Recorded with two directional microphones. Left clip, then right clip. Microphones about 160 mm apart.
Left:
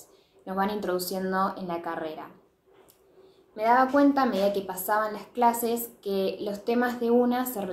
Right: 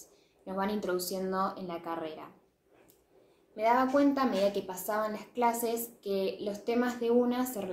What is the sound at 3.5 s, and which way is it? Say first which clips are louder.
A woman's voice: left 5 dB; 5° left (ahead or behind).